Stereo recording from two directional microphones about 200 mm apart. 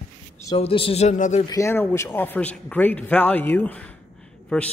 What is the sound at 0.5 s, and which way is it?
Speech, 25° left (ahead or behind).